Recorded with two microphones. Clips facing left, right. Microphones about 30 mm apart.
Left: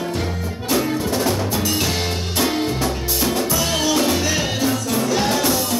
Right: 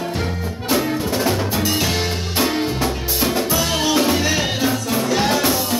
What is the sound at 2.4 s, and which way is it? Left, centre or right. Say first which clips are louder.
Music: right 1 dB; centre.